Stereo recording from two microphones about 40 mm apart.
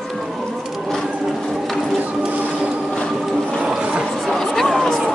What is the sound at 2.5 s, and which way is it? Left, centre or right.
Printer, right.